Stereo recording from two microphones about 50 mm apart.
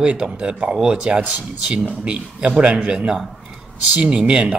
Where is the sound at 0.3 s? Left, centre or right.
Right.